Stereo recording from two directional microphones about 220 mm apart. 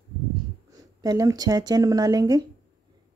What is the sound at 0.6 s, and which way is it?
Speech, 15° right (ahead or behind).